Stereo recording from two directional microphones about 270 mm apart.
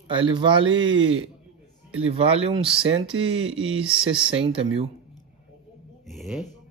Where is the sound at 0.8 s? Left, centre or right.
Right.